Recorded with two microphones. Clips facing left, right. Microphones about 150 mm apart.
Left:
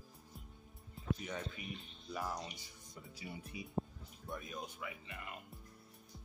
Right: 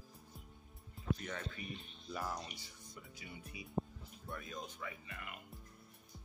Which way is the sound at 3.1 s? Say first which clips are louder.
Left 6 dB; 30° left (ahead or behind).